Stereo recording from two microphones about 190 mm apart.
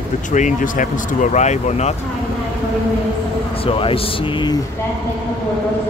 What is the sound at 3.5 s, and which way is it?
A man's voice, 30° left (ahead or behind).